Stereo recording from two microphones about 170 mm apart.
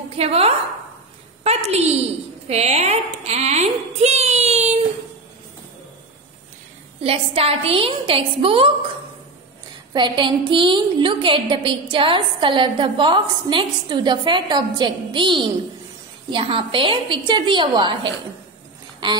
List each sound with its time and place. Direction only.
0.2 s a woman's voice: 35° right (ahead or behind)
7.0 s a woman's voice: 35° right (ahead or behind)
9.9 s a woman's voice: 30° right (ahead or behind)